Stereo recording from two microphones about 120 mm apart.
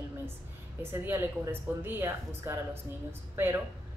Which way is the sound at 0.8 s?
20° right (ahead or behind).